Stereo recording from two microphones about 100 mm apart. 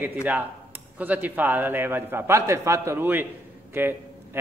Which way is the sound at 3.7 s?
20° right (ahead or behind).